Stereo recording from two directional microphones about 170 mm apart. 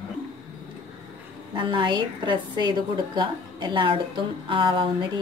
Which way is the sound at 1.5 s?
30° right (ahead or behind).